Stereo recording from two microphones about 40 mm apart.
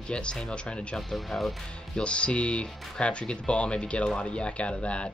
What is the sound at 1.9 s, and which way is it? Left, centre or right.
Speech, left.